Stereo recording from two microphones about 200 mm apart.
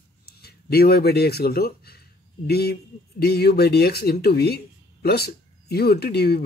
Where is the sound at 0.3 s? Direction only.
50° left (ahead or behind).